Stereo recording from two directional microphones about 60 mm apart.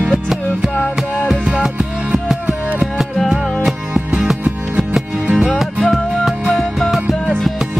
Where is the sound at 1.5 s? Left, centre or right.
Centre.